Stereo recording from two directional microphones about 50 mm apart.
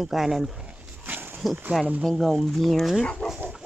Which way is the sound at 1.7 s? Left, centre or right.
Centre.